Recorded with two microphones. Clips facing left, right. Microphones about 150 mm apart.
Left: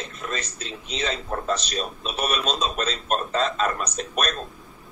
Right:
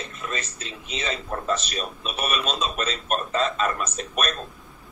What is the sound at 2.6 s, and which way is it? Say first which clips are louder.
Speech: left 1 dB; 35° left (ahead or behind).